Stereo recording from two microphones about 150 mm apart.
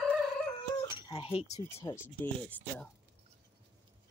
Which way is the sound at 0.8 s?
35° left (ahead or behind).